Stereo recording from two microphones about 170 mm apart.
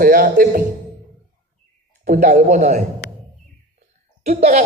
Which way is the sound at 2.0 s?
50° right (ahead or behind).